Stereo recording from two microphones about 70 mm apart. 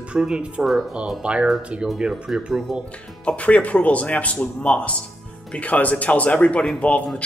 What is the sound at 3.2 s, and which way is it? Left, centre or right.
Speech, centre.